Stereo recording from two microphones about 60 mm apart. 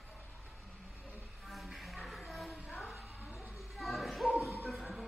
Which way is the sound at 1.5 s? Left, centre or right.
Centre.